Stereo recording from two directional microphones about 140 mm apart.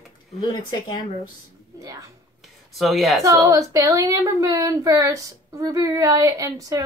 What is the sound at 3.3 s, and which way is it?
Speech, 25° right (ahead or behind).